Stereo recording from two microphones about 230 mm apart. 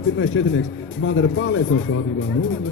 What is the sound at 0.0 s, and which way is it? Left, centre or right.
Speech, left.